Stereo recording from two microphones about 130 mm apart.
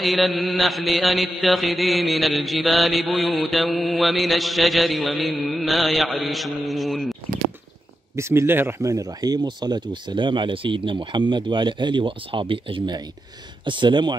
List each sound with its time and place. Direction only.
0.0 s chant: centre (ahead or behind)
8.2 s speech: 20° right (ahead or behind); by 14.1 s 35° right (ahead or behind)